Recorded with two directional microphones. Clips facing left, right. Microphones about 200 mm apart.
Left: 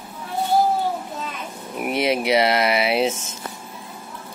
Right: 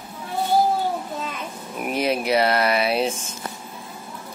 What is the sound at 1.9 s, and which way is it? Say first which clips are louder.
Speech: left 2 dB; 90° left.